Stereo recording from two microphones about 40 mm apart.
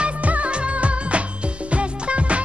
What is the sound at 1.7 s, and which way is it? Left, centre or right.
Music, right.